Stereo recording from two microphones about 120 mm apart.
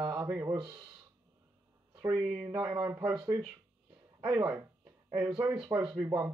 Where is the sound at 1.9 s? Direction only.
35° right (ahead or behind).